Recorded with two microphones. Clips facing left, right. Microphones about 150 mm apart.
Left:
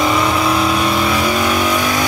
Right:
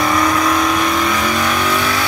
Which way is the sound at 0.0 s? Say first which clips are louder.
Even; 25° left (ahead or behind).